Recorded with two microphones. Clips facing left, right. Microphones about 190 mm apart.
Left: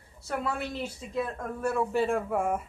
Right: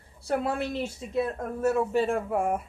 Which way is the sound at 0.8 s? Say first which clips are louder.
Right 4 dB; 25° right (ahead or behind).